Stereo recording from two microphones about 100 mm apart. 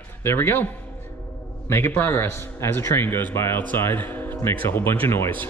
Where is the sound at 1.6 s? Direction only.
25° left (ahead or behind).